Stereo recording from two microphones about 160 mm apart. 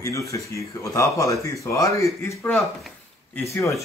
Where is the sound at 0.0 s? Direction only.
20° left (ahead or behind).